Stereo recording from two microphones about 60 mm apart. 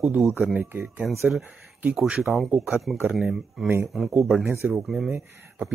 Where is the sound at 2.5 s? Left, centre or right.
Centre.